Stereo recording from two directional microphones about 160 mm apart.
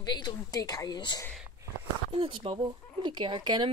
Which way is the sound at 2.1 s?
35° right (ahead or behind).